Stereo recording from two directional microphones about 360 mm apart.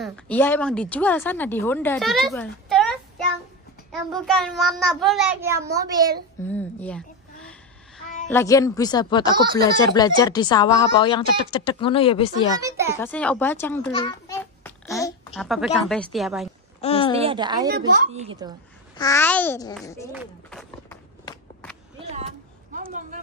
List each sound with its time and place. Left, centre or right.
0.0 s a woman's voice: centre
6.5 s a woman's voice: centre
8.3 s speech: centre
12.6 s a woman's voice: centre
13.0 s a child's voice: centre
16.8 s a sound: centre
17.2 s a woman's voice: centre
18.9 s speech: centre
20.1 s run: centre
22.8 s a man's voice: right